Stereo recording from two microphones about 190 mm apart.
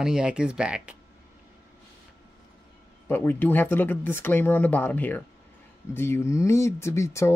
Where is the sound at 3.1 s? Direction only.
10° left (ahead or behind).